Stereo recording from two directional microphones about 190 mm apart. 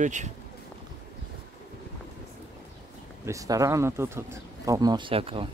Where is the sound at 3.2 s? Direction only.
15° right (ahead or behind).